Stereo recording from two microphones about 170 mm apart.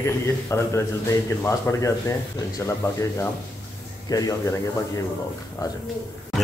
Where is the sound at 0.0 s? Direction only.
15° left (ahead or behind).